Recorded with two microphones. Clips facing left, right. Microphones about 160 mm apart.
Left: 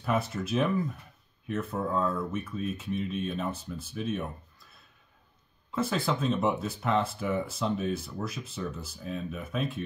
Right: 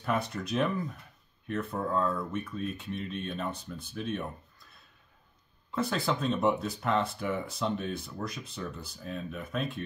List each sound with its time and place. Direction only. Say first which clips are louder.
0.0 s speech: left 2 dB; centre (ahead or behind)